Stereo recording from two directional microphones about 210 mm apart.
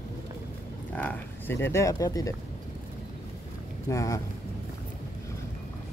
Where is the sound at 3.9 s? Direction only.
15° left (ahead or behind).